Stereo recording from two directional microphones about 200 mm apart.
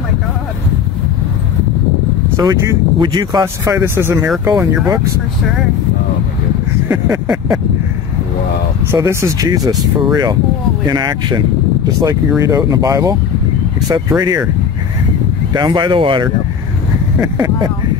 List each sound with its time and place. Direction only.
2.3 s speech: 15° right (ahead or behind)
6.9 s speech: 10° right (ahead or behind)
8.9 s speech: 15° right (ahead or behind)
15.5 s speech: 20° right (ahead or behind)